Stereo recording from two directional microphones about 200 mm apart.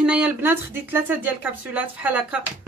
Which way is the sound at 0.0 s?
5° right (ahead or behind).